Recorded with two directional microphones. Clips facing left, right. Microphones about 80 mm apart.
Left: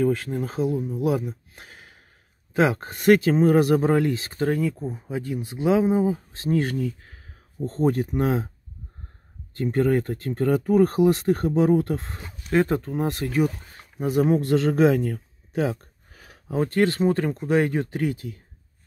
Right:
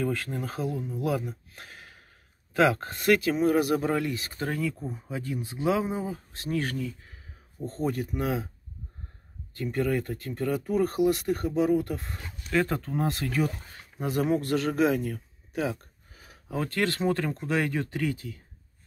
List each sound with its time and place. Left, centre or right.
0.4 s speech: left
4.5 s speech: left
7.6 s speech: left
9.6 s speech: left
12.6 s speech: left
13.9 s speech: centre
14.2 s speech: left
16.1 s a sound: left
16.4 s speech: left